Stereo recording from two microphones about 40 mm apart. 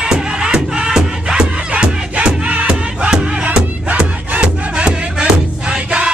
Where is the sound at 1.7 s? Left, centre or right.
Right.